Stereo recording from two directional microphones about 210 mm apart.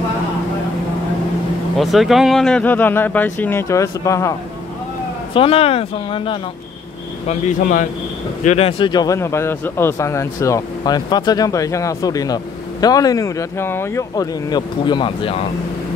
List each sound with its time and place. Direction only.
1.8 s speech: centre (ahead or behind)
5.3 s speech: 25° left (ahead or behind)
8.5 s speech: 30° left (ahead or behind)